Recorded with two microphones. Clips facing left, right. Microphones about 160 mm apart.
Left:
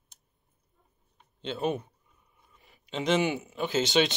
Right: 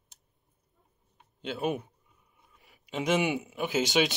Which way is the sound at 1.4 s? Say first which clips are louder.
Left 1 dB; 10° right (ahead or behind).